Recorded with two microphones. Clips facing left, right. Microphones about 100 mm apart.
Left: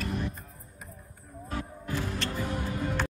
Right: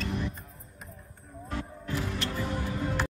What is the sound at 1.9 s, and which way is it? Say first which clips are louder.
Music: even; 5° right (ahead or behind).